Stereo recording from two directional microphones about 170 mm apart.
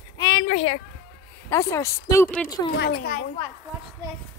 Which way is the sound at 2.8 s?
70° left (ahead or behind).